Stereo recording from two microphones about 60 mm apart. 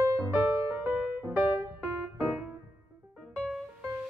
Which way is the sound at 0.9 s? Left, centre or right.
Right.